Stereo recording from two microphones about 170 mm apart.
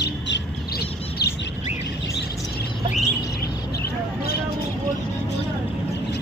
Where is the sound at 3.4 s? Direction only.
65° left (ahead or behind).